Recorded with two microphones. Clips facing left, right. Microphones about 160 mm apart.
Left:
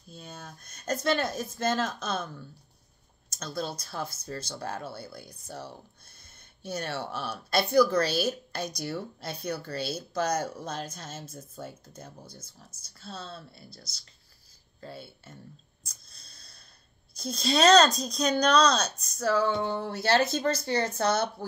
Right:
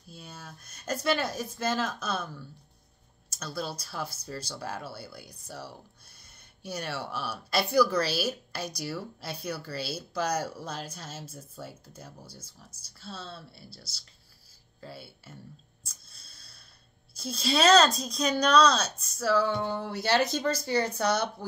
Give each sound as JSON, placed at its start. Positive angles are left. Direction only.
{"t": 0.7, "sound": "speech", "side_deg": -10}
{"t": 3.4, "sound": "speech", "side_deg": -10}
{"t": 6.6, "sound": "speech", "side_deg": -10}
{"t": 14.9, "sound": "speech", "side_deg": -10}
{"t": 15.8, "sound": "a sound", "side_deg": -5}
{"t": 17.1, "sound": "a woman's voice", "side_deg": -5}
{"t": 19.1, "sound": "a sound", "side_deg": 50}
{"t": 19.7, "sound": "speech", "side_deg": -15}